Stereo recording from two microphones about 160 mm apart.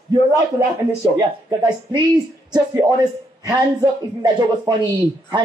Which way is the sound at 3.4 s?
25° right (ahead or behind).